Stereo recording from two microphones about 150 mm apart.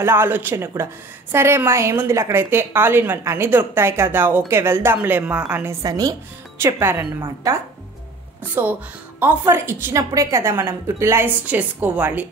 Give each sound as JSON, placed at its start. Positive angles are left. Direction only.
{"t": 0.0, "sound": "a woman's voice", "side_deg": -15}
{"t": 9.2, "sound": "a woman's voice", "side_deg": -10}